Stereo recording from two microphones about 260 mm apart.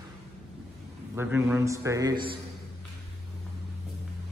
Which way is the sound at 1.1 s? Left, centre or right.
Centre.